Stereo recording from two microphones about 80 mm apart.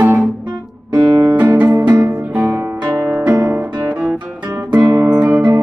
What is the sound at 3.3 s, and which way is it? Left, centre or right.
Guitar, right.